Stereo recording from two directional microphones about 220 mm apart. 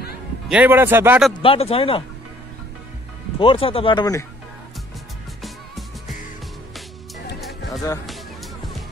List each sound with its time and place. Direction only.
0.5 s a man's voice: 10° right (ahead or behind)
1.4 s speech: 25° left (ahead or behind)
3.3 s speech: 25° left (ahead or behind)
5.4 s music: centre (ahead or behind)
7.3 s music: centre (ahead or behind)